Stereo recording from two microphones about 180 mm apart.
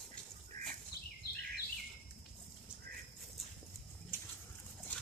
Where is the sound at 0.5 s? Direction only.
40° right (ahead or behind).